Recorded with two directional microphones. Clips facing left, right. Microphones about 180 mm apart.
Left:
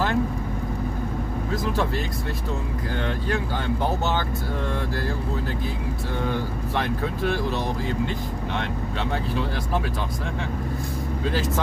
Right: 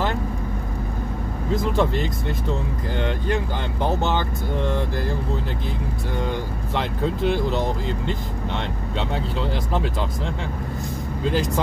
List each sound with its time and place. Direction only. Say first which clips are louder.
1.5 s speech: right 5 dB; 25° right (ahead or behind)
3.8 s speech: right 5 dB; 15° right (ahead or behind)
6.3 s speech: even; 20° right (ahead or behind)
11.2 s speech: right 4 dB; 15° right (ahead or behind)